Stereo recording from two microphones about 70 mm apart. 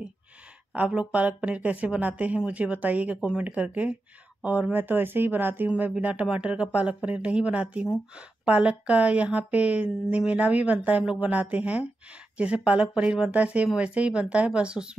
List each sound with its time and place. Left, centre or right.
0.7 s speech: centre